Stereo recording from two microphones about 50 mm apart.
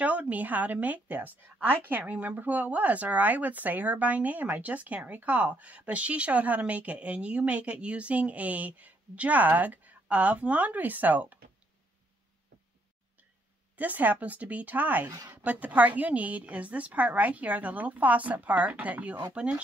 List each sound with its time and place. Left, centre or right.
0.0 s speech: right
13.7 s speech: right